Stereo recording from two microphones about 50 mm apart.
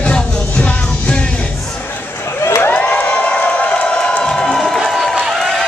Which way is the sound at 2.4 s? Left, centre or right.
Left.